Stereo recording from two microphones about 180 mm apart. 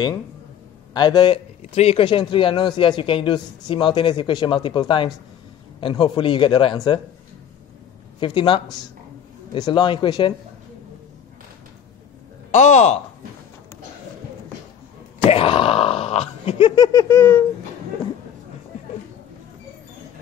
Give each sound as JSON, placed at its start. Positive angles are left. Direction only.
{"t": 0.9, "sound": "speech", "side_deg": 25}
{"t": 1.6, "sound": "speech", "side_deg": 35}
{"t": 8.2, "sound": "speech", "side_deg": 30}
{"t": 12.4, "sound": "speech", "side_deg": 40}
{"t": 15.2, "sound": "speech", "side_deg": 30}